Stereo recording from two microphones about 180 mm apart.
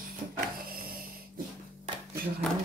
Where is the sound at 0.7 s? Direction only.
55° right (ahead or behind).